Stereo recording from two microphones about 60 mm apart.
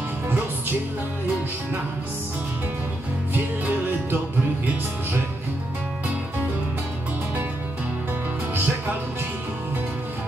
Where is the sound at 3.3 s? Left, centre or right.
Right.